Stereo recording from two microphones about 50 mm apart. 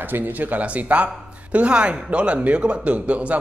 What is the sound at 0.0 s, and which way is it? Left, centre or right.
Speech, right.